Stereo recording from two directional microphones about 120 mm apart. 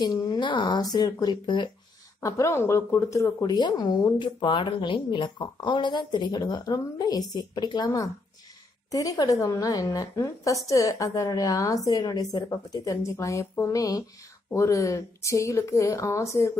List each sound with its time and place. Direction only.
0.0 s a woman's voice: 35° left (ahead or behind)
2.1 s a woman's voice: 25° left (ahead or behind)
3.5 s a woman's voice: 35° left (ahead or behind)